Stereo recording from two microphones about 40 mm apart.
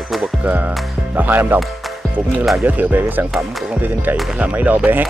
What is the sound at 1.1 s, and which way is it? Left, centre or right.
Speech, right.